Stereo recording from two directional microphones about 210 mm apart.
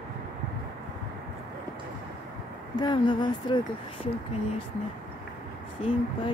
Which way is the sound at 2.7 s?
20° left (ahead or behind).